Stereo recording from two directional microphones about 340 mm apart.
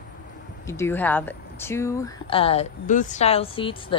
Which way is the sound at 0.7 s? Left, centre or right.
Centre.